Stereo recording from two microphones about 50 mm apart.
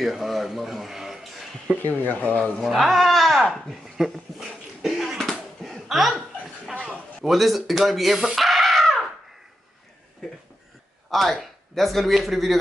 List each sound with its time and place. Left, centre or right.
0.0 s speech: centre
1.8 s speech: left
2.2 s speech: left
2.6 s speech: centre
4.8 s a sound: centre
7.2 s speech: centre
8.4 s a sound: centre
11.1 s speech: centre